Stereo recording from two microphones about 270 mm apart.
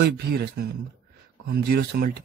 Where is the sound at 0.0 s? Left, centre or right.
Right.